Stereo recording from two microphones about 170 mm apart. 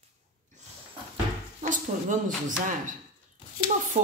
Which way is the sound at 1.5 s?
50° right (ahead or behind).